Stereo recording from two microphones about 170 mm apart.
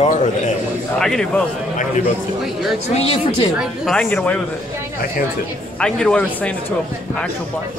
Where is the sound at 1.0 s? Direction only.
Centre (ahead or behind).